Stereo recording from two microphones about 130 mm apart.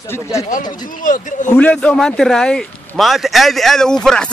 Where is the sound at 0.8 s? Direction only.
90° left.